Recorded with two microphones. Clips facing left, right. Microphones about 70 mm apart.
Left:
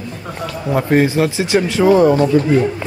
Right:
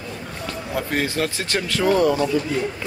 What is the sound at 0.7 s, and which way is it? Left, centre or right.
Speech, left.